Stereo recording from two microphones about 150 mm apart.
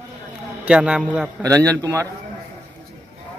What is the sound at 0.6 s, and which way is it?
Speech, 5° right (ahead or behind).